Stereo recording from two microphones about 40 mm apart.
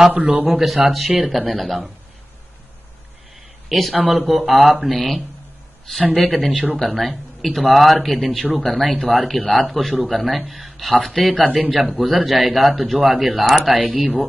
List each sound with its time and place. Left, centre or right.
0.1 s speech: right
0.5 s a man's voice: centre
3.6 s a man's voice: centre